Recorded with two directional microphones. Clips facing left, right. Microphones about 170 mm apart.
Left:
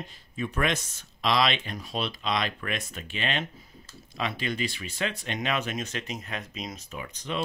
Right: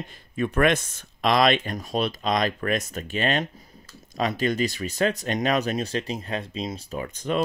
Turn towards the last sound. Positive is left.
turn(degrees=-50)  # may be behind; listen again after turning